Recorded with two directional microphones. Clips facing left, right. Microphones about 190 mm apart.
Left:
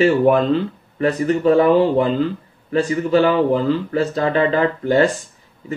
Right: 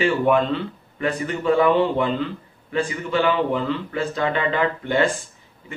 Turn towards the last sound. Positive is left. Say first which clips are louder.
# left 5 dB
turn(degrees=35)  # may be behind; listen again after turning